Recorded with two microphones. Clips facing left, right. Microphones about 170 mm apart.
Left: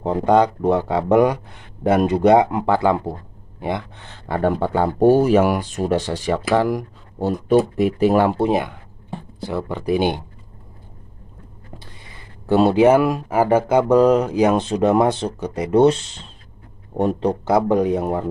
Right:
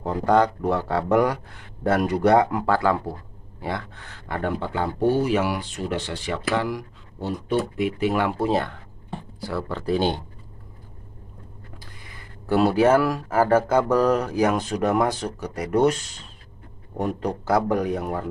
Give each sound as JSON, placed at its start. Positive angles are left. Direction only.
{"t": 0.0, "sound": "speech", "side_deg": 20}
{"t": 4.5, "sound": "speech", "side_deg": 40}
{"t": 8.4, "sound": "speech", "side_deg": 15}
{"t": 11.8, "sound": "speech", "side_deg": 25}